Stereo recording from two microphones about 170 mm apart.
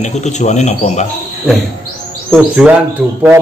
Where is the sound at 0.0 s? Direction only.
40° left (ahead or behind).